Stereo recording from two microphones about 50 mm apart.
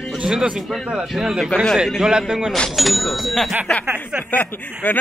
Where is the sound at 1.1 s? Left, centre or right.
Centre.